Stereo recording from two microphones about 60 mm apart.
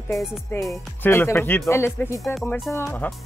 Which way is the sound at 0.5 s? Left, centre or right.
Left.